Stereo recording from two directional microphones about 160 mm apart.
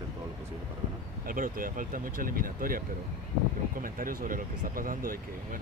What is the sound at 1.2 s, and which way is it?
Speech, 60° right (ahead or behind).